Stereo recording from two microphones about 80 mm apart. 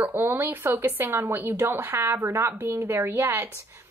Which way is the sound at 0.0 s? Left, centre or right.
Right.